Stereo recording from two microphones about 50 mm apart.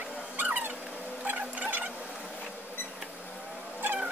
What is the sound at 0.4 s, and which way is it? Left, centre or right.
Dog, right.